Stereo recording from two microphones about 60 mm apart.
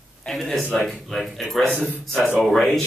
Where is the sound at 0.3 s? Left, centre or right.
Centre.